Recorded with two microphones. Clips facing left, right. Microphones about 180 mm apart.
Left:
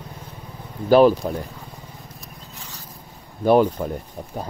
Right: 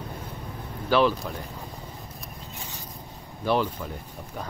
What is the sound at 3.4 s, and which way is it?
Speech, 50° left (ahead or behind).